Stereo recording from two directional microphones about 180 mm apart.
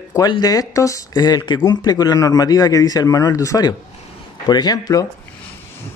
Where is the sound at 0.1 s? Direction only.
20° left (ahead or behind).